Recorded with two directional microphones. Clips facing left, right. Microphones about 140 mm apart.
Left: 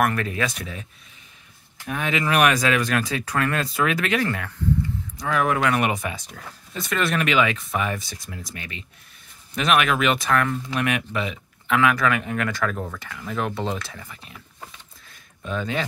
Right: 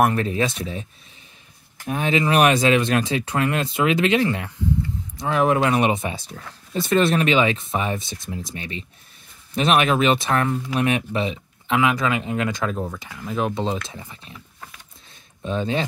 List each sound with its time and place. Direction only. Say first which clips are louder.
0.0 s speech: right 3 dB; 25° right (ahead or behind)
1.9 s speech: right 4 dB; 30° right (ahead or behind)
15.0 s a sound: right 3 dB; 30° right (ahead or behind)